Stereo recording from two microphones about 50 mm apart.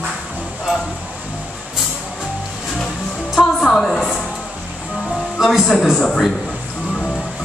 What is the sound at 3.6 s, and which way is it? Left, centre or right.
Music, centre.